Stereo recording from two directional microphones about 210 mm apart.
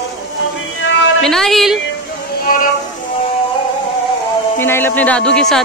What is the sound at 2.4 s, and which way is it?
Music, 40° left (ahead or behind).